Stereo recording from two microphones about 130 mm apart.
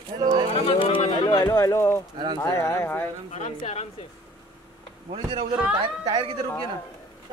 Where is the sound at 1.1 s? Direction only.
30° left (ahead or behind).